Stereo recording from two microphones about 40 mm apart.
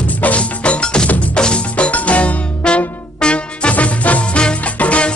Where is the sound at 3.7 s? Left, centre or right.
Left.